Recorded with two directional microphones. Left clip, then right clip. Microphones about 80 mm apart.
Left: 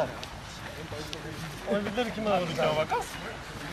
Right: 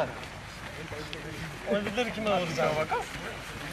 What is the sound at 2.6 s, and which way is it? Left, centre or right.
Speech, left.